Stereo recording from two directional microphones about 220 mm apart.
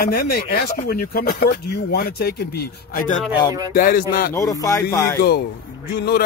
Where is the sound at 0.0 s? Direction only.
45° left (ahead or behind).